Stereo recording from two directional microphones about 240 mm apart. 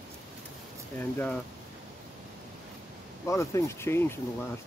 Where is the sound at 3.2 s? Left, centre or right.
Centre.